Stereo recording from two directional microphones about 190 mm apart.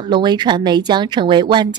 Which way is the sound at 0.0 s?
25° right (ahead or behind).